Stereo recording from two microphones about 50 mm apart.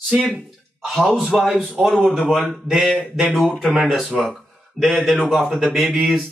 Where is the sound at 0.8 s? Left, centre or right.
Centre.